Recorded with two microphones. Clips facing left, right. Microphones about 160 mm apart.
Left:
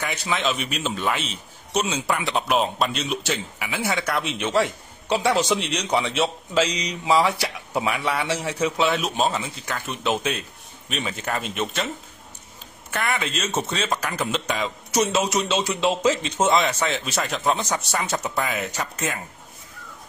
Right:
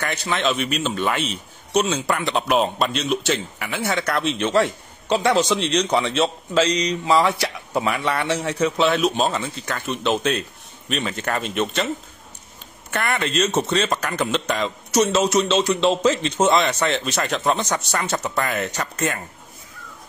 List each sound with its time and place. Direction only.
0.0 s a man's voice: 5° left (ahead or behind)
12.9 s a man's voice: centre (ahead or behind)